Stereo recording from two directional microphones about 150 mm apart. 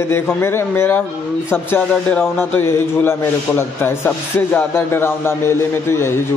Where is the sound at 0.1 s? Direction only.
15° left (ahead or behind).